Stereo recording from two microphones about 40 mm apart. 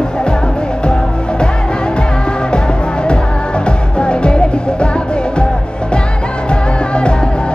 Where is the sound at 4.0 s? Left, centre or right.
Left.